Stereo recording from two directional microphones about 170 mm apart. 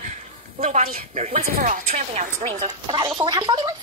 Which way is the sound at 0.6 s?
40° right (ahead or behind).